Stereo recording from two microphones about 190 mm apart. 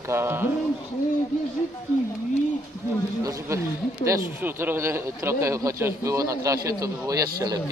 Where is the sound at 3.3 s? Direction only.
15° right (ahead or behind).